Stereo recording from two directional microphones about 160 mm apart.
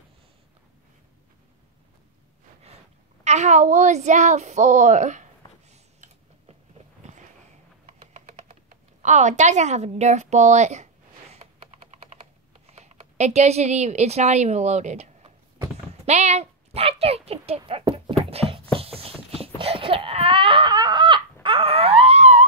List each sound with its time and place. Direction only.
3.3 s a woman's voice: 45° right (ahead or behind)
5.7 s typing: 45° right (ahead or behind)
7.8 s typing: 45° right (ahead or behind)
12.1 s computer keyboard: 40° right (ahead or behind)
16.1 s speech: 45° right (ahead or behind)
18.3 s a sound: 35° right (ahead or behind)